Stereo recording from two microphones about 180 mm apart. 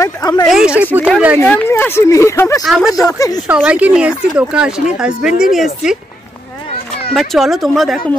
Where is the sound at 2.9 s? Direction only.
20° left (ahead or behind).